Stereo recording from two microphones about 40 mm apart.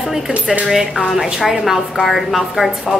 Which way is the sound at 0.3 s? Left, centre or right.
Right.